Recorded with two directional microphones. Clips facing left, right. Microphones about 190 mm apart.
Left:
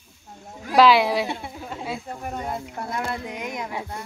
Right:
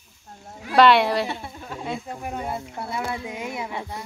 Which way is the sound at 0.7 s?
Centre (ahead or behind).